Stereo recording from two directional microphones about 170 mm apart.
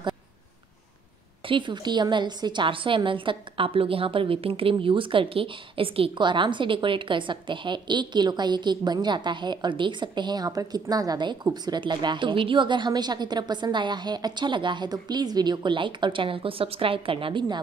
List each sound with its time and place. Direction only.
1.5 s a woman's voice: 25° right (ahead or behind)